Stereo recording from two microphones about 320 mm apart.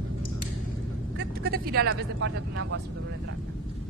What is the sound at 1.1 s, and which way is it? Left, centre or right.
Speech, right.